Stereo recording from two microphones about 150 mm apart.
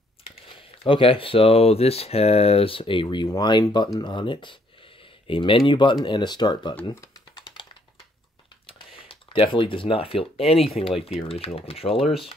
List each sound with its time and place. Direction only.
0.2 s speech: 35° left (ahead or behind)
6.8 s typing: 25° left (ahead or behind)
8.6 s speech: 40° left (ahead or behind)